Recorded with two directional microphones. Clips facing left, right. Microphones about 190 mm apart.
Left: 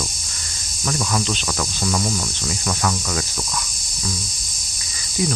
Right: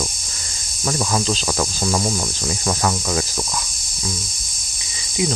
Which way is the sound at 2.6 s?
30° right (ahead or behind).